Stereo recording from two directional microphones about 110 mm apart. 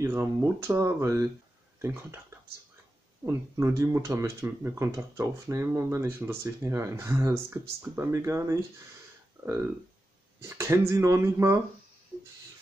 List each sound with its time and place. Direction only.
0.0 s speech: 25° right (ahead or behind)
3.3 s speech: 25° right (ahead or behind)
9.4 s a sound: 10° right (ahead or behind)
10.5 s speech: 25° right (ahead or behind)